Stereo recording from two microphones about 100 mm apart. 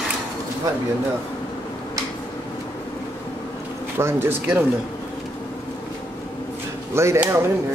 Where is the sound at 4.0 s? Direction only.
25° right (ahead or behind).